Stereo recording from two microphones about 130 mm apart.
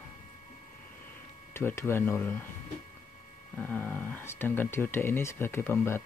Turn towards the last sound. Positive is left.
turn(degrees=20)  # may be behind; listen again after turning